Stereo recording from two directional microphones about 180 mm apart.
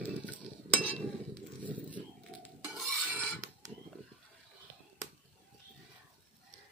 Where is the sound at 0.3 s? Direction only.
10° left (ahead or behind).